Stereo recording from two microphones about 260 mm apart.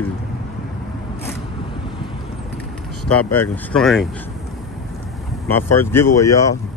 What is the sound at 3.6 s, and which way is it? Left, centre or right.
Speech, centre.